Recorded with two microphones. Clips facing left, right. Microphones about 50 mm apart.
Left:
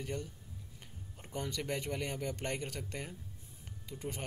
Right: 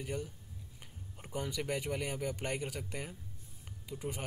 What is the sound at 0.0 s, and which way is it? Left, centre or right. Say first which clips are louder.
A man's voice: right 1 dB; centre.